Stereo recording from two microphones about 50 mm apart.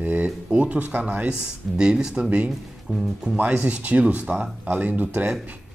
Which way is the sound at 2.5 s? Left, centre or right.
Centre.